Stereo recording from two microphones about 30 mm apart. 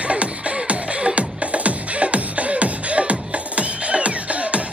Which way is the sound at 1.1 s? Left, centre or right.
Right.